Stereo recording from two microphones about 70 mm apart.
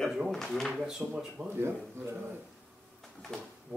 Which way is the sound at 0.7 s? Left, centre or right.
Centre.